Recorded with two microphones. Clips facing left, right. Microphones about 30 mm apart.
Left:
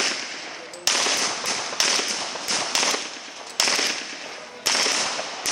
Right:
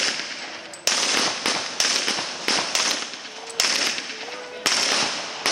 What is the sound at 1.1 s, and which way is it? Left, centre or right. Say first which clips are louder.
Fireworks: right 2 dB; right.